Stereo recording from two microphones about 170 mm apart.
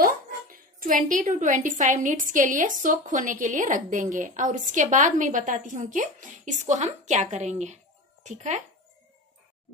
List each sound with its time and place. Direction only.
0.0 s dog: 55° right (ahead or behind)
2.0 s a woman's voice: 50° right (ahead or behind)